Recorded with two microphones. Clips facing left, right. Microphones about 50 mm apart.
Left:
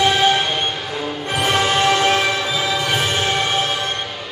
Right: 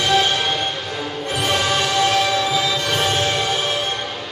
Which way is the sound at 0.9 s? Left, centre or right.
Centre.